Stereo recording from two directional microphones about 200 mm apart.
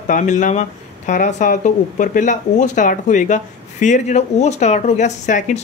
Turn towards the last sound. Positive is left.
turn(degrees=40)  # may be behind; listen again after turning